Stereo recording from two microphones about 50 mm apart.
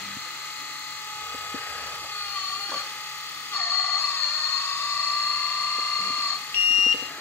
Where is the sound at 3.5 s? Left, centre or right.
Left.